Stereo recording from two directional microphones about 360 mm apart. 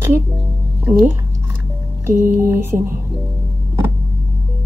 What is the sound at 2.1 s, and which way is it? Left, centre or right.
Music, centre.